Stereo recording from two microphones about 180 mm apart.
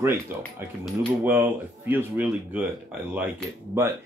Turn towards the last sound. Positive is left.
turn(degrees=-15)  # may be behind; listen again after turning